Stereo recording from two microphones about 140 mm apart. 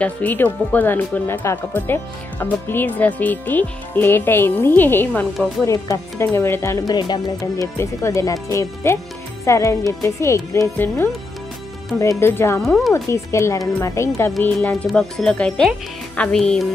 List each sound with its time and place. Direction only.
0.0 s speech: 10° left (ahead or behind)
5.7 s speech: 25° left (ahead or behind)
6.9 s speech: 30° left (ahead or behind)
12.6 s speech: centre (ahead or behind)
12.9 s speech: 20° left (ahead or behind); by 16.6 s 5° left (ahead or behind)